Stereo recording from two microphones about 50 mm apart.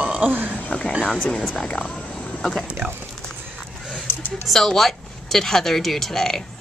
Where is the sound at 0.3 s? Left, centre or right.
Right.